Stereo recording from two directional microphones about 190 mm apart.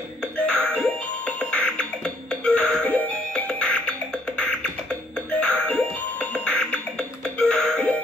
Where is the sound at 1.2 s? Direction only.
5° left (ahead or behind).